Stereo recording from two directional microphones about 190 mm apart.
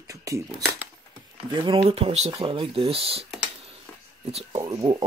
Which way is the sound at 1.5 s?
25° right (ahead or behind).